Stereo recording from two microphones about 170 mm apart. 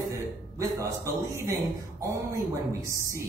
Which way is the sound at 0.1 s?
20° right (ahead or behind).